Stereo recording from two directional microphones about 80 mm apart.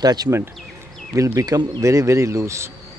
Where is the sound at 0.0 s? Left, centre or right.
Right.